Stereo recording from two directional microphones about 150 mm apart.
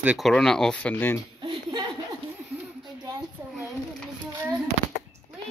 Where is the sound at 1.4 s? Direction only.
30° right (ahead or behind).